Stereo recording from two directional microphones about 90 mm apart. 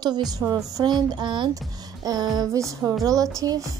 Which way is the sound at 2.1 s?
50° right (ahead or behind).